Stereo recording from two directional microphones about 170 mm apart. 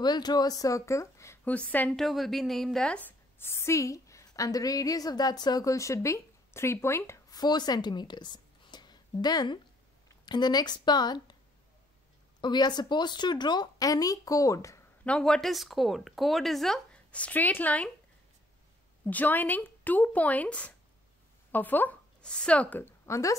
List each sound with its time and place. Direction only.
0.0 s speech: 25° left (ahead or behind)
12.4 s speech: 25° left (ahead or behind)
15.0 s speech: 5° left (ahead or behind)
19.0 s speech: 10° left (ahead or behind)